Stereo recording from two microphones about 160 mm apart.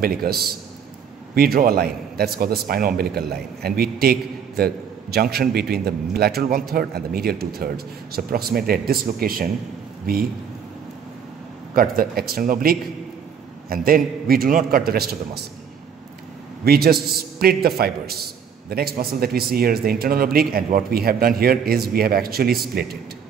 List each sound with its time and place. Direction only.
0.0 s a man's voice: 70° right (ahead or behind)
11.7 s a man's voice: 65° right (ahead or behind)
16.6 s a man's voice: 75° right (ahead or behind)